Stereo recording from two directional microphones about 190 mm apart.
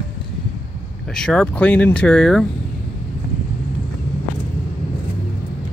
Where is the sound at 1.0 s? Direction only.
5° left (ahead or behind).